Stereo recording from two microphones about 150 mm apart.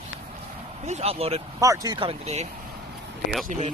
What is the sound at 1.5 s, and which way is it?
Speech, 20° right (ahead or behind).